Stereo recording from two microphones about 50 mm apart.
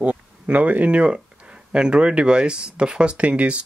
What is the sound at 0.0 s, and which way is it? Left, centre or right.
Speech, right.